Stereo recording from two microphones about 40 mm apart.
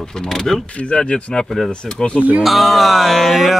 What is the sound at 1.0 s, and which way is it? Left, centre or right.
Speech, left.